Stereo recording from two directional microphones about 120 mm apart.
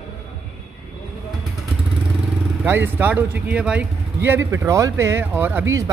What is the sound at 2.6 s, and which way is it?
A man's voice, 15° right (ahead or behind).